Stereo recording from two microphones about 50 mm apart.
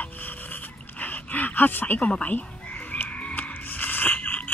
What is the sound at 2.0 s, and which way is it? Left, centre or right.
Frog, left.